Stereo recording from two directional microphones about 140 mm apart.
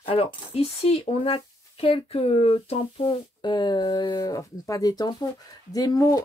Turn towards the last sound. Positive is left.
turn(degrees=25)  # may be behind; listen again after turning